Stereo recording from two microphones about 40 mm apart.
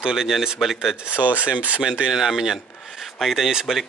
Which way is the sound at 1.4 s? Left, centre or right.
Right.